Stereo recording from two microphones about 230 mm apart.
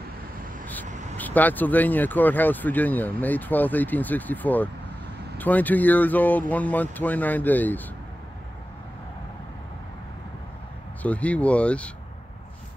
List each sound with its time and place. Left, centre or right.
0.8 s vehicle: right
1.1 s speech: centre
11.0 s speech: centre